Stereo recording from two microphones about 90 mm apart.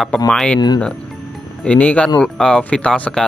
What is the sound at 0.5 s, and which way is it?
Speech, 50° left (ahead or behind).